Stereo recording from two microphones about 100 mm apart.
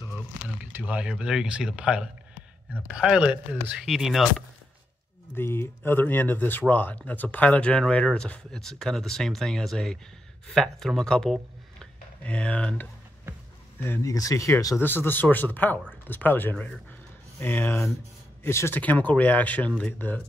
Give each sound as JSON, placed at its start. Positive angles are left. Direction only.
{"t": 0.7, "sound": "speech", "side_deg": -15}
{"t": 5.3, "sound": "speech", "side_deg": 25}
{"t": 11.8, "sound": "a sound", "side_deg": 10}
{"t": 13.7, "sound": "speech", "side_deg": 25}
{"t": 14.0, "sound": "speech", "side_deg": 35}
{"t": 14.8, "sound": "speech", "side_deg": 20}